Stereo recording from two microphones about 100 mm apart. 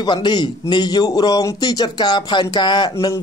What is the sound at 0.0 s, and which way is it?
Speech, 50° left (ahead or behind).